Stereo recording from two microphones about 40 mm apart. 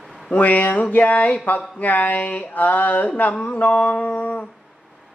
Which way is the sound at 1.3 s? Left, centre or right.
Left.